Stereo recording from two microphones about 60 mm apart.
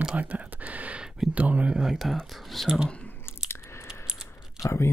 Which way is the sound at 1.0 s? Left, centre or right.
Centre.